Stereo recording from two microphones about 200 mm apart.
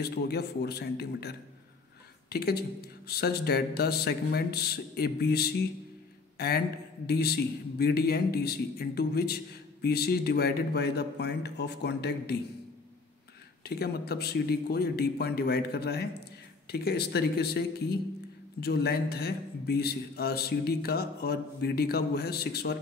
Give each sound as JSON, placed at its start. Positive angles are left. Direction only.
{"t": 0.0, "sound": "a man's voice", "side_deg": 55}
{"t": 13.7, "sound": "a man's voice", "side_deg": 50}